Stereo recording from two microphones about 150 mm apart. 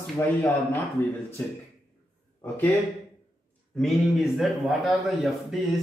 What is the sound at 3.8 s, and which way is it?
Speech, centre (ahead or behind).